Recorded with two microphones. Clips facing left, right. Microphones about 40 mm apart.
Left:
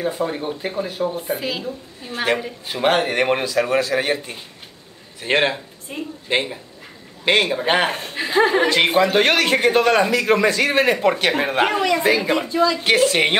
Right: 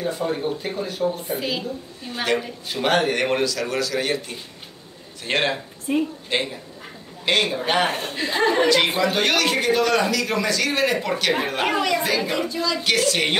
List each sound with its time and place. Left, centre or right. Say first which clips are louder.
0.0 s speech: left 1 dB; centre
1.2 s speech: left 1 dB; centre
2.7 s speech: left 2 dB; left
5.2 s speech: left 4 dB; centre
8.8 s a man's voice: left 5 dB; left
11.6 s speech: left 5 dB; left